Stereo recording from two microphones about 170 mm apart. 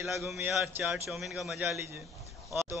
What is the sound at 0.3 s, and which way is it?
Speech, 10° right (ahead or behind).